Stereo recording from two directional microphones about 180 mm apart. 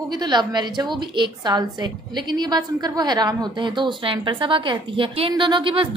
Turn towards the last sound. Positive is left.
turn(degrees=-30)  # may be behind; listen again after turning